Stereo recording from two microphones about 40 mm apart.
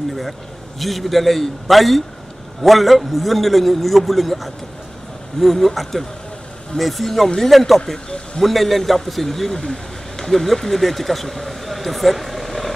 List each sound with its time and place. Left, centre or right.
0.7 s a man's voice: centre
7.8 s speech: centre
8.4 s a man's voice: centre